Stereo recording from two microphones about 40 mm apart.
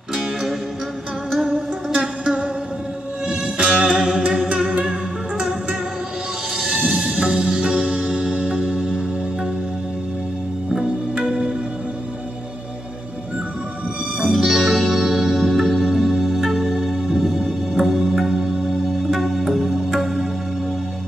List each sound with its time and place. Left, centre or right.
1.5 s music: centre
6.9 s music: centre
11.2 s music: centre
14.2 s music: centre